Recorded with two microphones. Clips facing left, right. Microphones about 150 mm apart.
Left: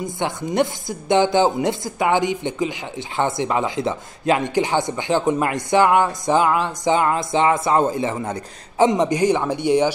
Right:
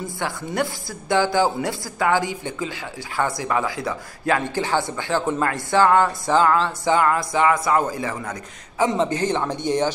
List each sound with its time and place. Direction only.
0.0 s speech: 20° left (ahead or behind)